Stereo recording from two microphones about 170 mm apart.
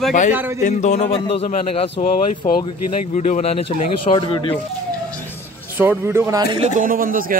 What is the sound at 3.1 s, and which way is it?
A man's voice, 40° left (ahead or behind).